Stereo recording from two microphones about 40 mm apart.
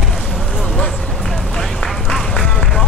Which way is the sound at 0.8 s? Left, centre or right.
Centre.